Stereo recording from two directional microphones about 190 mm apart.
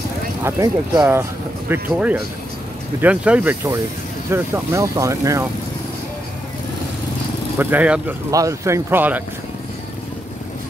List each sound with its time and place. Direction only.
0.4 s speech: 15° right (ahead or behind)
7.5 s speech: 5° right (ahead or behind)